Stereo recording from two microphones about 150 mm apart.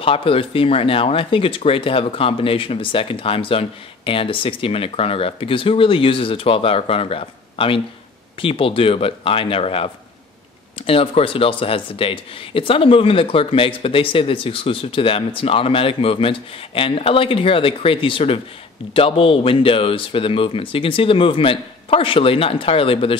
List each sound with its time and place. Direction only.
0.0 s speech: 40° left (ahead or behind)
10.9 s speech: 40° left (ahead or behind)